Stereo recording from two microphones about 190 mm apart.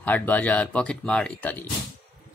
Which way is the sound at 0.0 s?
10° left (ahead or behind).